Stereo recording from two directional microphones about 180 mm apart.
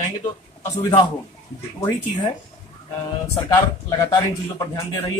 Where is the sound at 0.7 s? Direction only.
20° left (ahead or behind).